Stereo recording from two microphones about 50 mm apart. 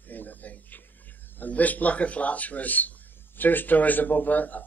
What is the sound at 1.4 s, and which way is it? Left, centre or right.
Speech, left.